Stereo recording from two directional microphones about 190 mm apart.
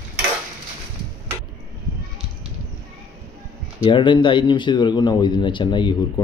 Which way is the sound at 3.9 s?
25° left (ahead or behind).